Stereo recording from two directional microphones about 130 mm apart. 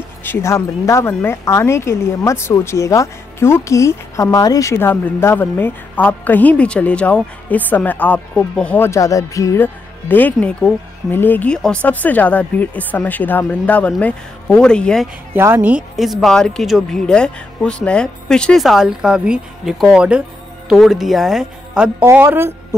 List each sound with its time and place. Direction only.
0.2 s speech: 20° left (ahead or behind)
10.0 s speech: 15° left (ahead or behind)
15.3 s speech: 15° right (ahead or behind)
16.0 s speech: centre (ahead or behind)
22.0 s speech: 15° right (ahead or behind)